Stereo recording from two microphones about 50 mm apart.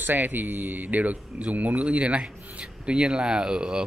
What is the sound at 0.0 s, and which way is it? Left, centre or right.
Speech, right.